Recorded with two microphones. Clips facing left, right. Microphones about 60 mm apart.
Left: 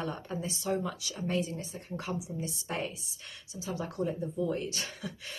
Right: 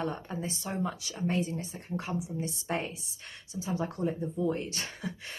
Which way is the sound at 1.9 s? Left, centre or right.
Right.